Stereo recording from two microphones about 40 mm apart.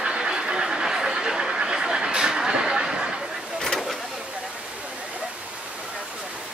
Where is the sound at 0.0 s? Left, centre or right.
Right.